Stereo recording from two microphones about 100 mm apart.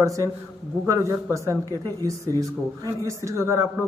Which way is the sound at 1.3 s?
30° right (ahead or behind).